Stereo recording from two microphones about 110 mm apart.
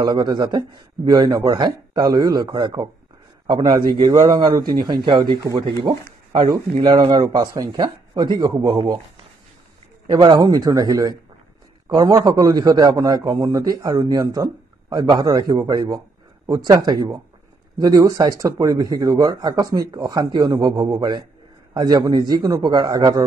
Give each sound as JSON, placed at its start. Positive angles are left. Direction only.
{"t": 0.0, "sound": "a man's voice", "side_deg": -40}
{"t": 10.1, "sound": "a man's voice", "side_deg": -40}